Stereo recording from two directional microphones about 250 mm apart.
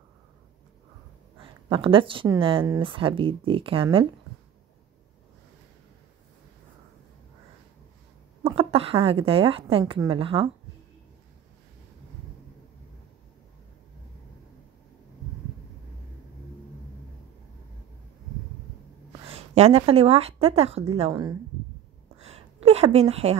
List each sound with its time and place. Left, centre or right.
1.4 s speech: right
8.5 s a woman's voice: right
19.3 s speech: right
22.1 s a sound: right